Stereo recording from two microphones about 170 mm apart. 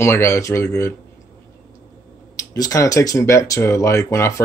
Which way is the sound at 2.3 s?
20° left (ahead or behind).